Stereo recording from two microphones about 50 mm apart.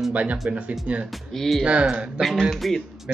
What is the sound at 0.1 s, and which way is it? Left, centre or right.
Speech, right.